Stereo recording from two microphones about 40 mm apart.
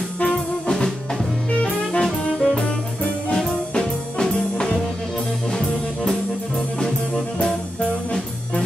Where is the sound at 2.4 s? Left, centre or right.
Left.